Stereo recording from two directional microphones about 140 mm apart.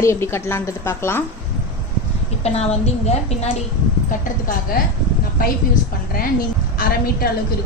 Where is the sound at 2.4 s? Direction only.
50° left (ahead or behind).